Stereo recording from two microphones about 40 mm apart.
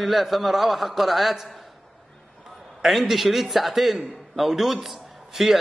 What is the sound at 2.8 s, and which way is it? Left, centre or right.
A man's voice, centre.